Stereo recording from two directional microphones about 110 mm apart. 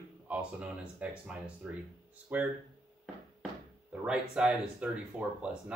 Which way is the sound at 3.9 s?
10° right (ahead or behind).